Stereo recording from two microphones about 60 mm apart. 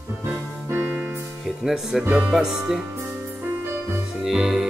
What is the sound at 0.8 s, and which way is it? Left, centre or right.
Music, right.